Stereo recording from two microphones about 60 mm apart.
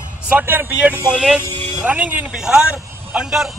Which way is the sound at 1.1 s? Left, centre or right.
Centre.